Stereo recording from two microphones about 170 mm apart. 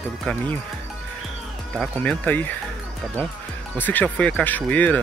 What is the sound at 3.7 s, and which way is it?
Speech, 10° left (ahead or behind).